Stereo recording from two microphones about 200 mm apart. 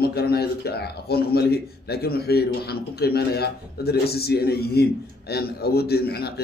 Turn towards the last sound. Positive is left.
turn(degrees=55)  # may be behind; listen again after turning